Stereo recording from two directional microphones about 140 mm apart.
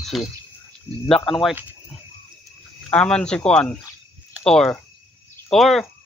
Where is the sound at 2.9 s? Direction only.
10° left (ahead or behind).